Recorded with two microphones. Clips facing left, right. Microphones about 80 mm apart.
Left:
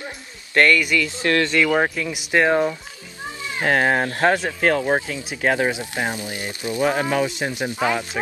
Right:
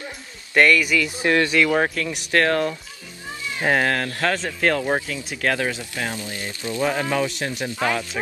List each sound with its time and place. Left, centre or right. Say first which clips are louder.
0.6 s speech: even; centre
1.0 s speech: even; centre
1.6 s speech: left 1 dB; centre
3.8 s speech: left 4 dB; left
4.6 s speech: left 2 dB; centre